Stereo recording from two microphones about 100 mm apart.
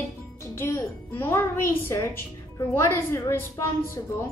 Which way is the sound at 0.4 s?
25° left (ahead or behind).